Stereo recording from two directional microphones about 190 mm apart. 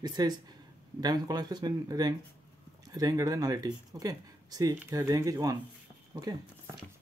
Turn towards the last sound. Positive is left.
turn(degrees=-20)  # may be behind; listen again after turning